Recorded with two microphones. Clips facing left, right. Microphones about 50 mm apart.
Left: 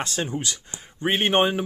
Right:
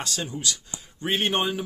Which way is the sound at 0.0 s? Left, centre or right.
Left.